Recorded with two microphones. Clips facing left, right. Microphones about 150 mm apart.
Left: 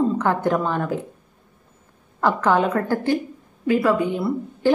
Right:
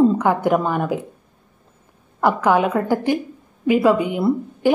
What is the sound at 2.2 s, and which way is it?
A woman's voice, 10° right (ahead or behind).